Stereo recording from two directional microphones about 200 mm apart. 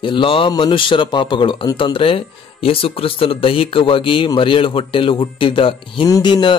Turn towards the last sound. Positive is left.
turn(degrees=20)  # may be behind; listen again after turning